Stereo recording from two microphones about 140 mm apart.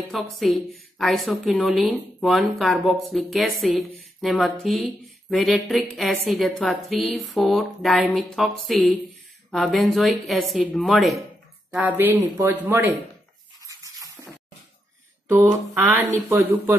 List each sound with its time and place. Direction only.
0.1 s a woman's voice: centre (ahead or behind)
11.7 s speech: 10° right (ahead or behind)
13.7 s a sound: 25° right (ahead or behind)
15.2 s speech: 15° right (ahead or behind)